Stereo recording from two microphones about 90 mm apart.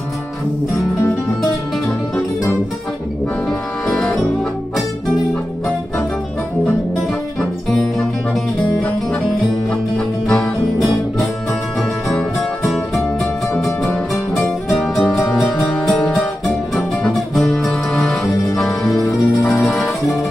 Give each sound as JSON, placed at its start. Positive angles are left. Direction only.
{"t": 3.4, "sound": "music", "side_deg": 5}
{"t": 7.3, "sound": "music", "side_deg": 5}
{"t": 9.9, "sound": "music", "side_deg": 10}
{"t": 13.6, "sound": "music", "side_deg": 5}